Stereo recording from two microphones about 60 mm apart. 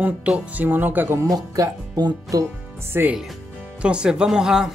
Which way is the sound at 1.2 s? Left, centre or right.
Right.